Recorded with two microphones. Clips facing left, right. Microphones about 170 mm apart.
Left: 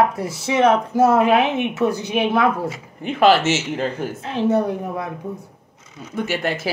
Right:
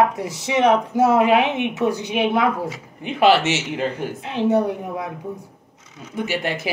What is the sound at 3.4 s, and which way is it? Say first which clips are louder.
Speech: left 1 dB; 40° left (ahead or behind).